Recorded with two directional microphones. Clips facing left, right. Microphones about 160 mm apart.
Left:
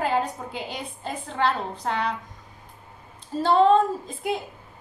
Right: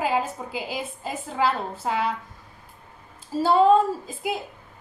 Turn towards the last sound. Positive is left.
turn(degrees=-5)  # may be behind; listen again after turning